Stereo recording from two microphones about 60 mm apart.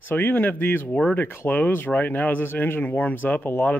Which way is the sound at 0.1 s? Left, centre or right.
Left.